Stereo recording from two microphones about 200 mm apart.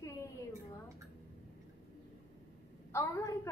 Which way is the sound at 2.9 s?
15° left (ahead or behind).